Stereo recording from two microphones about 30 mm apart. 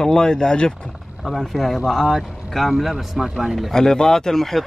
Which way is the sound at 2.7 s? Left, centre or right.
Centre.